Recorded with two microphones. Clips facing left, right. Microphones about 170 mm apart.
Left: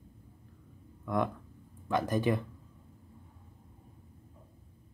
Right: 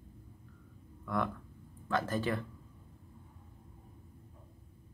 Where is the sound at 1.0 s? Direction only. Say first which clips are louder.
Left 3 dB; 20° left (ahead or behind).